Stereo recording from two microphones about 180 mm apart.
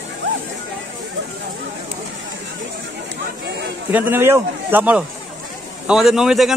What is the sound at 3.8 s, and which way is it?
A man's voice, 10° right (ahead or behind).